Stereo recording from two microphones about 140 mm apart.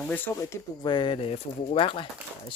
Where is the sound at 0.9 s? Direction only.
35° left (ahead or behind).